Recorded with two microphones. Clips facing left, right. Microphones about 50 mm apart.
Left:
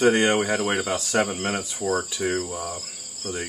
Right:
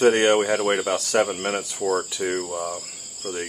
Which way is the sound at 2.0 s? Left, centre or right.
Right.